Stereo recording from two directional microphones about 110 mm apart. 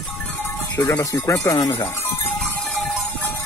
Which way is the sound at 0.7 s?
25° left (ahead or behind).